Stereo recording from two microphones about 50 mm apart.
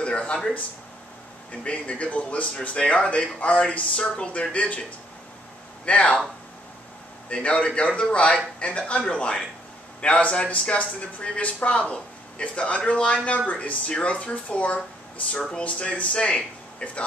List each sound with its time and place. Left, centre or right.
0.0 s a sound: left
1.6 s speech: left
5.9 s speech: left
7.2 s speech: left